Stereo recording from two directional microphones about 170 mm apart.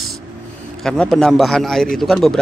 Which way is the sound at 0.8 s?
Centre (ahead or behind).